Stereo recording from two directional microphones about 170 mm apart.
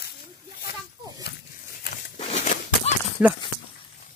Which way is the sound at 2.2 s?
40° left (ahead or behind).